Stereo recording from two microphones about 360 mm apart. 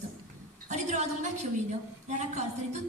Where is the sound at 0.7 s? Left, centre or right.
Centre.